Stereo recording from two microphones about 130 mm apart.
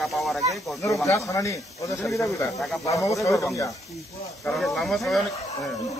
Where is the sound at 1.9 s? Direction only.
Centre (ahead or behind).